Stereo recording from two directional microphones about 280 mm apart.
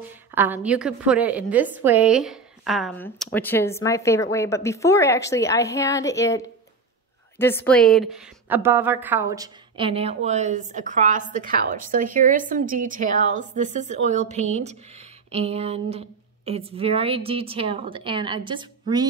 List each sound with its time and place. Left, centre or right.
0.3 s a woman's voice: centre